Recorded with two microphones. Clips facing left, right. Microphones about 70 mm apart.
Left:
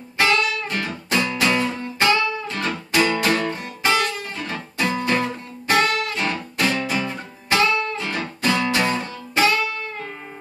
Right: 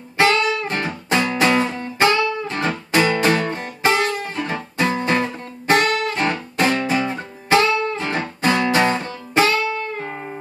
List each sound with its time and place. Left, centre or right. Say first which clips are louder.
0.2 s music: right 3 dB; right
4.3 s guitar: right 4 dB; right